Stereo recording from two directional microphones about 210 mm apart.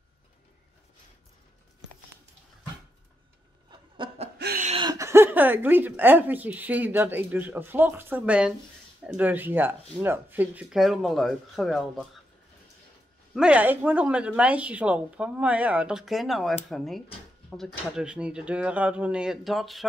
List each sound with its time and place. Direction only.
3.7 s snicker: 25° right (ahead or behind)
4.4 s a sound: 50° right (ahead or behind)
4.6 s a woman's voice: 20° right (ahead or behind); by 12.1 s centre (ahead or behind)
13.3 s a woman's voice: 5° right (ahead or behind)